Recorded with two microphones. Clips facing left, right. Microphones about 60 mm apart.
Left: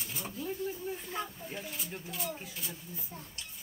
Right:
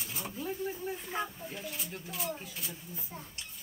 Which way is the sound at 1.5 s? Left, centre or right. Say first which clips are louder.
Even; centre.